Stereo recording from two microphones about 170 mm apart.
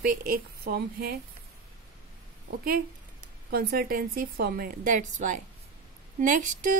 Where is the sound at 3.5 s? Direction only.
60° right (ahead or behind).